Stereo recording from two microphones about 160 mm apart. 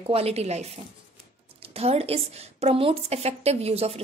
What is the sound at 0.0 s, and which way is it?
Speech, 40° right (ahead or behind).